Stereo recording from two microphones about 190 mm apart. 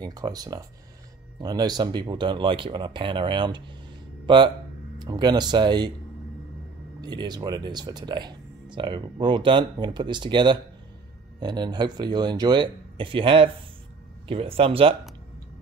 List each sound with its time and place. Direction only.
0.0 s speech: 20° right (ahead or behind)
7.0 s speech: 20° right (ahead or behind)